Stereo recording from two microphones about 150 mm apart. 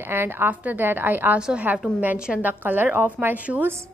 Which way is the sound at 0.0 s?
15° right (ahead or behind).